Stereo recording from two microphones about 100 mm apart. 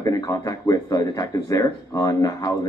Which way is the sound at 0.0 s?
35° left (ahead or behind).